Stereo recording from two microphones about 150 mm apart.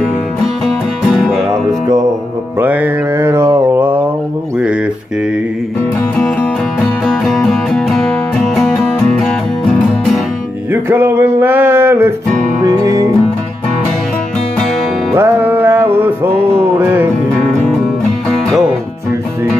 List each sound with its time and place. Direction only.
1.1 s music: centre (ahead or behind)
2.6 s mantra: 10° right (ahead or behind)
6.1 s music: 10° left (ahead or behind)
10.7 s music: 15° right (ahead or behind)
15.1 s music: 15° right (ahead or behind)